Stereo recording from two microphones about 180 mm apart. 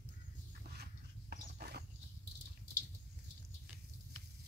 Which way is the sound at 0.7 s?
60° right (ahead or behind).